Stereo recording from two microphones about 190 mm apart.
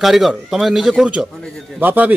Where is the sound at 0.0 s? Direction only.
Centre (ahead or behind).